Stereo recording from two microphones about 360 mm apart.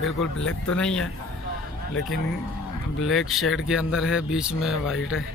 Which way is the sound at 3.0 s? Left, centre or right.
Centre.